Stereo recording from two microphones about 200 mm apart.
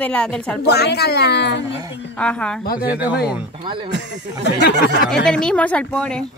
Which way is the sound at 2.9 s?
5° right (ahead or behind).